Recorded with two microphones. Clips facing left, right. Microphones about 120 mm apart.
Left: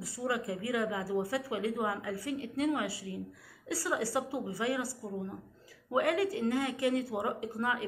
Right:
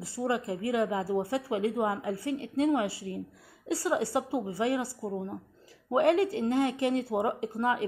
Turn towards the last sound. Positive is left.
turn(degrees=-30)  # may be behind; listen again after turning